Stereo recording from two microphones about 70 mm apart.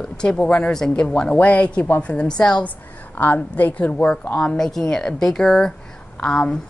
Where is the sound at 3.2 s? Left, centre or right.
Left.